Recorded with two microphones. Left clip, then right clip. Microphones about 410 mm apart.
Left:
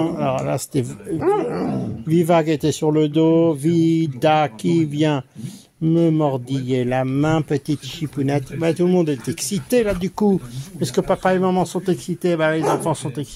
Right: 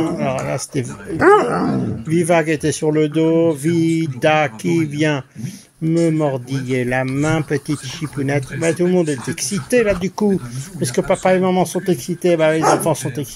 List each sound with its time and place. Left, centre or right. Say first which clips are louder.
0.2 s a sound: even; left
1.2 s speech: right 8 dB; left
2.0 s speech: right 1 dB; left
5.9 s speech: right 1 dB; left
7.2 s speech: right 1 dB; left